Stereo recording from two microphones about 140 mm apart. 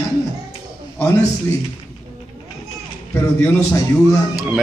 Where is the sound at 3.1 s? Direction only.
20° left (ahead or behind).